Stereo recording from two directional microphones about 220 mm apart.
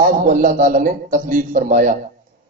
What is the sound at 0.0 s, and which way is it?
A man's voice, 40° right (ahead or behind).